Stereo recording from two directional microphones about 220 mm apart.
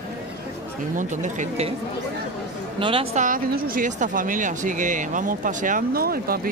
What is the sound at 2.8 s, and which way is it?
Speech, 25° right (ahead or behind).